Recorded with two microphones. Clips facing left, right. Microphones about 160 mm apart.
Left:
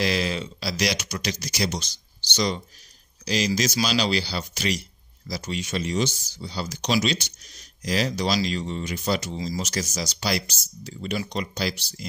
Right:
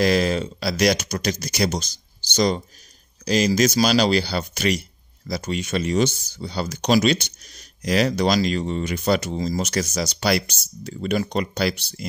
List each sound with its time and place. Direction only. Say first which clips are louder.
0.0 s speech: right 6 dB; 45° right (ahead or behind)